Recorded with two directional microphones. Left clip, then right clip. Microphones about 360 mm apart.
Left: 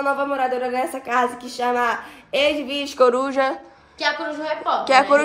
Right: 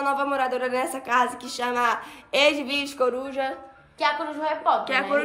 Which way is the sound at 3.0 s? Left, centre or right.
Left.